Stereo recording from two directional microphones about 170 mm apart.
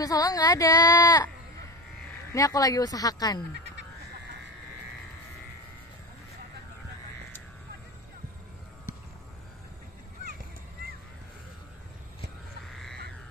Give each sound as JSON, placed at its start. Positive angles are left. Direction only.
{"t": 0.0, "sound": "speech", "side_deg": 20}
{"t": 2.3, "sound": "speech", "side_deg": 20}